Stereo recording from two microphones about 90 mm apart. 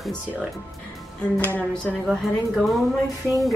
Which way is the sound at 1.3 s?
20° left (ahead or behind).